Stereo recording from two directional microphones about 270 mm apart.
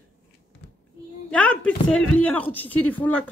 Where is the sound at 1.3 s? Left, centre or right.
Centre.